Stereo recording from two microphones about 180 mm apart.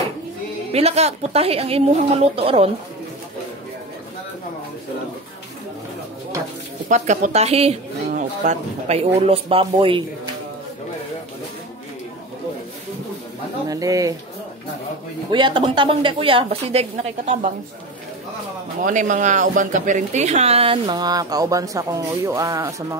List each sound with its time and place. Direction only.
0.7 s speech: 35° right (ahead or behind)
6.9 s speech: 40° right (ahead or behind)
13.7 s speech: 20° right (ahead or behind)
15.3 s speech: 25° right (ahead or behind)
18.9 s speech: 45° right (ahead or behind); by 22.9 s 15° right (ahead or behind)